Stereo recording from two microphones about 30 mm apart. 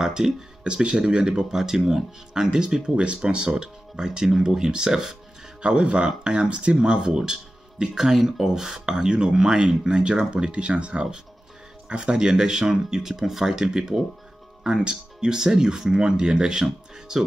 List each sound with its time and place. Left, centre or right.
0.0 s speech: right
2.5 s speech: right
5.6 s speech: right
7.0 s speech: right
13.1 s speech: centre; by 17.2 s right